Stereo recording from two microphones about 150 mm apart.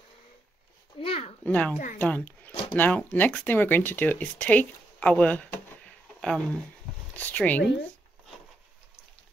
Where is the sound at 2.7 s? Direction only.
10° left (ahead or behind).